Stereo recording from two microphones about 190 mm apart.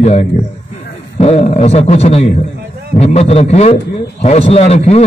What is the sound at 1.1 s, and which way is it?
A man's voice, 30° left (ahead or behind).